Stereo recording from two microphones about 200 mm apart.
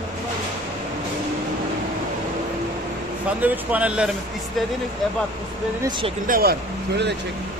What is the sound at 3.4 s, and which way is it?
Speech, 10° right (ahead or behind).